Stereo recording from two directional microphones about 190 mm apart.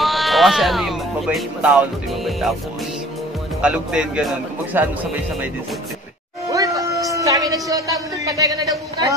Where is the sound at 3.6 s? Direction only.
5° right (ahead or behind).